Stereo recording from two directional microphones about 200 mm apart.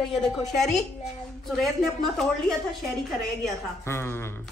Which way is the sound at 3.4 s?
10° left (ahead or behind).